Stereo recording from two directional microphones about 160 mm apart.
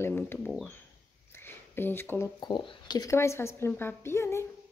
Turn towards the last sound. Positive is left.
turn(degrees=15)  # may be behind; listen again after turning